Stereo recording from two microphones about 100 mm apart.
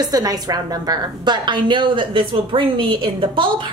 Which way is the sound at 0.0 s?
40° right (ahead or behind).